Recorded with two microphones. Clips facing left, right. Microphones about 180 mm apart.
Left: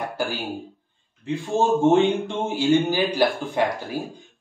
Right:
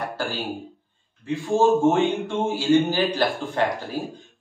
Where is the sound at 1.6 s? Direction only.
20° left (ahead or behind).